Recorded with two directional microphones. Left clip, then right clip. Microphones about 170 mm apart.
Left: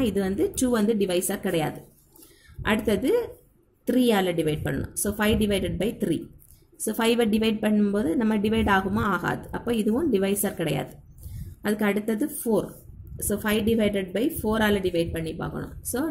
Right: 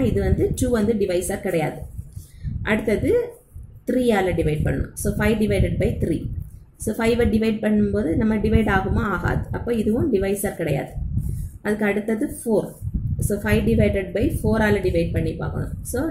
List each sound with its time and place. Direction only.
0.0 s a woman's voice: 50° left (ahead or behind)